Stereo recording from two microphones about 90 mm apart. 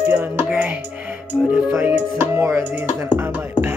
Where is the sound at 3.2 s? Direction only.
25° right (ahead or behind).